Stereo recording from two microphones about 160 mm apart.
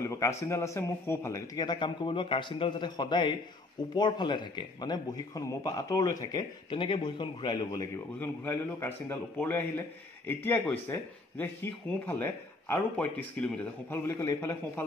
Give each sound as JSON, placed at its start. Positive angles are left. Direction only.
{"t": 0.0, "sound": "a man's voice", "side_deg": 20}
{"t": 8.2, "sound": "a man's voice", "side_deg": 15}